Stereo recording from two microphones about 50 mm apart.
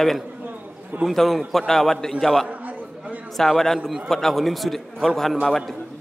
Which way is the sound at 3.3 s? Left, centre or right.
Centre.